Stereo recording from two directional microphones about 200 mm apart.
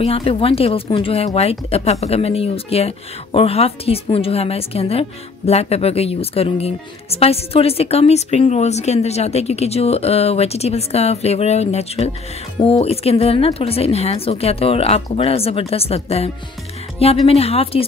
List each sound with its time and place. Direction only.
0.0 s speech: 30° left (ahead or behind)